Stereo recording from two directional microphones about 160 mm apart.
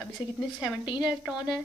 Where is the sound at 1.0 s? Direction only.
5° right (ahead or behind).